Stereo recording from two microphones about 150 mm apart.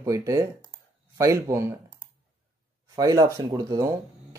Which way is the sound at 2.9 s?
25° right (ahead or behind).